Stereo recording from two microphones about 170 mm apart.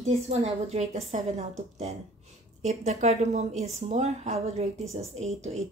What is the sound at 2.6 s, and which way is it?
A woman's voice, 40° right (ahead or behind).